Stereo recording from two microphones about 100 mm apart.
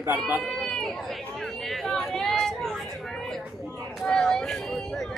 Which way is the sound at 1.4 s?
Centre (ahead or behind).